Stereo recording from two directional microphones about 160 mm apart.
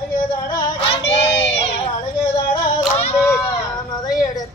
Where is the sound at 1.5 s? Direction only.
40° left (ahead or behind).